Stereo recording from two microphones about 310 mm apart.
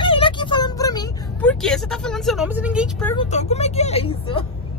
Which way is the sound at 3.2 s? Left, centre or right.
Left.